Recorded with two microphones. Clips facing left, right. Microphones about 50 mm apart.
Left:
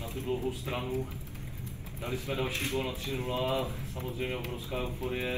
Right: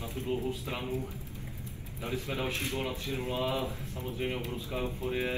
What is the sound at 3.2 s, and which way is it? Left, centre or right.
Speech, left.